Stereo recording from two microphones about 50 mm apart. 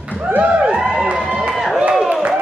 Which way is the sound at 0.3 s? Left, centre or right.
Right.